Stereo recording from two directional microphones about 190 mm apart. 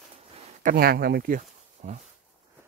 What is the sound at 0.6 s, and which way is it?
Speech, 50° right (ahead or behind).